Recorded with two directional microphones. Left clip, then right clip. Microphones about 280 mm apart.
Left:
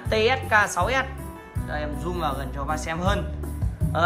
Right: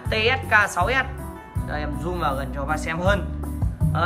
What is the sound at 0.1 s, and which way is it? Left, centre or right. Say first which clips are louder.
Speech: right 1 dB; centre.